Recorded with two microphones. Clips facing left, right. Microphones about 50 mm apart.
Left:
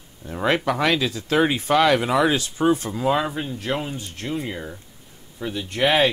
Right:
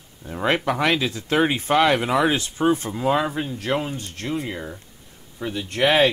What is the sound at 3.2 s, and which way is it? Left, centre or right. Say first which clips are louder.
Speech: right 1 dB; centre.